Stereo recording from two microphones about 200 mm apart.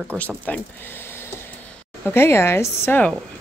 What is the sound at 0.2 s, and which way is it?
Speech, 5° left (ahead or behind).